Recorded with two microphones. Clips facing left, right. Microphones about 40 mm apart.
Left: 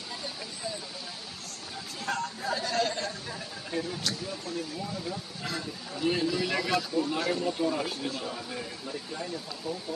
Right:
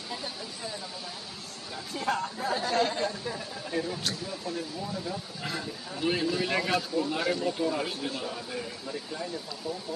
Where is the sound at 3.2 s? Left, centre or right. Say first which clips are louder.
Right 3 dB; centre.